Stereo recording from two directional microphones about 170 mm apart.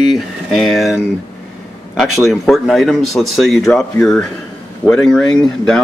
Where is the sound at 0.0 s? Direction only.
Centre (ahead or behind).